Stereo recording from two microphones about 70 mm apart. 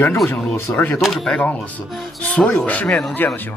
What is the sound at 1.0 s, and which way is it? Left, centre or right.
Speech, centre.